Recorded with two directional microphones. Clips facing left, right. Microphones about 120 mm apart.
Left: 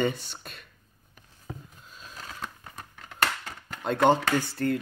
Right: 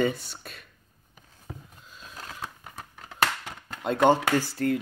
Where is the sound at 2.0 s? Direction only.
Centre (ahead or behind).